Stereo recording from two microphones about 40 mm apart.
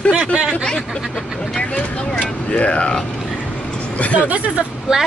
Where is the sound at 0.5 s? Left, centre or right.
Left.